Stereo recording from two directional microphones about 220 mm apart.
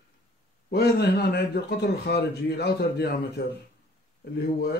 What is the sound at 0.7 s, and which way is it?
Speech, 45° left (ahead or behind).